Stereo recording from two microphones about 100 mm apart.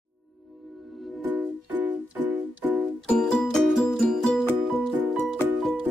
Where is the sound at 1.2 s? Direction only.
15° right (ahead or behind).